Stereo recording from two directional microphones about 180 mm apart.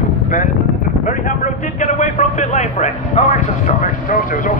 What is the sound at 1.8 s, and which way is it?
A man's voice, 45° left (ahead or behind).